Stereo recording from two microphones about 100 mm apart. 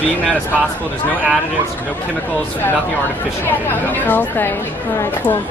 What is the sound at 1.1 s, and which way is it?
Speech, 15° right (ahead or behind).